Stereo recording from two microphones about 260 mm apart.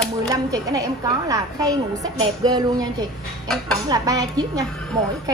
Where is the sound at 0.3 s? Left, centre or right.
Centre.